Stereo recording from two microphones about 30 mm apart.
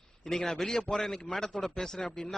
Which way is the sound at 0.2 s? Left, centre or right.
Centre.